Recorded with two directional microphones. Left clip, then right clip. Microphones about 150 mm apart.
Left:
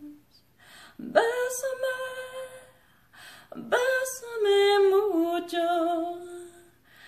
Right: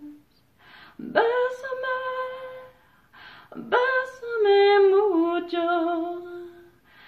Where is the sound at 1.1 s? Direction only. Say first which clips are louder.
Right 2 dB; 35° left (ahead or behind).